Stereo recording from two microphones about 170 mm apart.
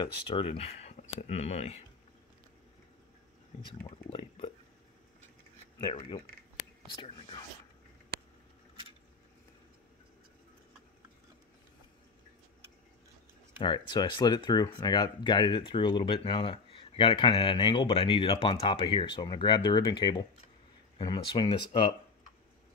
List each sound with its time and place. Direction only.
0.0 s speech: 35° left (ahead or behind)
3.6 s speech: 30° left (ahead or behind)
5.8 s speech: 25° left (ahead or behind)
13.6 s speech: 25° left (ahead or behind)